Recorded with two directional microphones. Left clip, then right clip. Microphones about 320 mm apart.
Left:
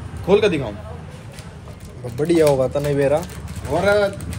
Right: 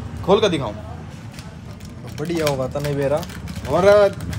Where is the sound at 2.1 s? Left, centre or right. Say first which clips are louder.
Left 6 dB; centre.